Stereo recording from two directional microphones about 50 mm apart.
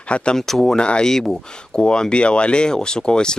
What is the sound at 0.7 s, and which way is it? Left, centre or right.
Speech, centre.